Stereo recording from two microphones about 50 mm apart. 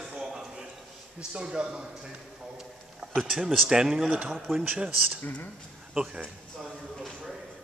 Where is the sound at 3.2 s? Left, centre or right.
Centre.